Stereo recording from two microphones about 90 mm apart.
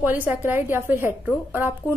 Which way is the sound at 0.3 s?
25° right (ahead or behind).